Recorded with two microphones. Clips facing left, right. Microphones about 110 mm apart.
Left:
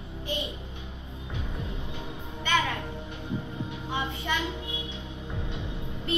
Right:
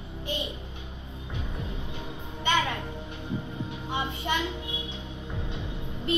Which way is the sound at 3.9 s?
25° right (ahead or behind).